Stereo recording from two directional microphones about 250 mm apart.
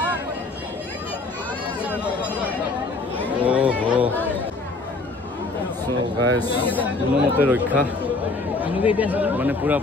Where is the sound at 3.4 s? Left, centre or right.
Centre.